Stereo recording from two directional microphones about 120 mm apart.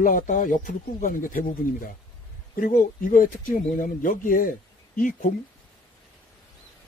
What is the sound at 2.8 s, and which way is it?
A man's voice, 90° left.